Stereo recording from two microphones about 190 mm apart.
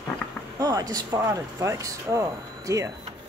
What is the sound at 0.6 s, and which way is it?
Speech, 20° right (ahead or behind).